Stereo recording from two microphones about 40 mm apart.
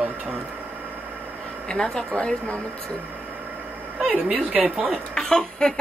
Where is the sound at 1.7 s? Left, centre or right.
Centre.